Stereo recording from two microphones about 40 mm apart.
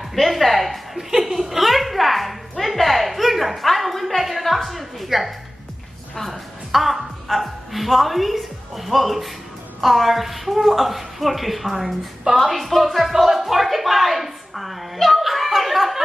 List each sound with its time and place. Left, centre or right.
0.1 s chuckle: centre
6.1 s a woman's voice: centre